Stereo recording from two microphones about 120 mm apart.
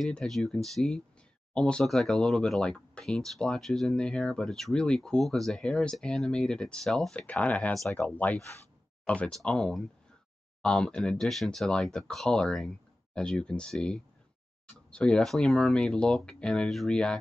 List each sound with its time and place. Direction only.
0.0 s speech: 5° left (ahead or behind)